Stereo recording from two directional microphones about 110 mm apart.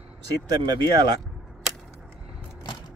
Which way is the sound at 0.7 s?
40° right (ahead or behind).